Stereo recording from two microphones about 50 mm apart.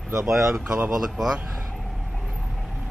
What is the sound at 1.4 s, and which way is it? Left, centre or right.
Vehicle, centre.